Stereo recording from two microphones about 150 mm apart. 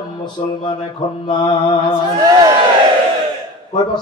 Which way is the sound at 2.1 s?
25° right (ahead or behind).